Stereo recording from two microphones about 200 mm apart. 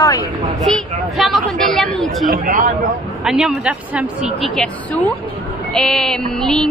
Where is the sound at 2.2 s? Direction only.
45° right (ahead or behind).